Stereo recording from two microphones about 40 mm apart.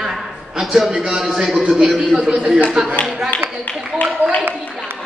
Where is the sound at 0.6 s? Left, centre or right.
Centre.